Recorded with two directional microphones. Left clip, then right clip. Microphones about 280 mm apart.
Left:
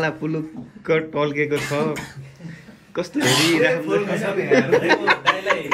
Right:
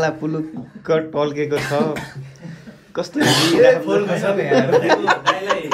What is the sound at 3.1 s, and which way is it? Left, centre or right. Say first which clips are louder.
Speech: right 2 dB; right.